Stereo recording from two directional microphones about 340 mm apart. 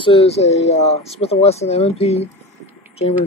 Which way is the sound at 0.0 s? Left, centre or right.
Centre.